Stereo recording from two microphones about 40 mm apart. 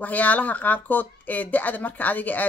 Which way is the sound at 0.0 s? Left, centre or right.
Left.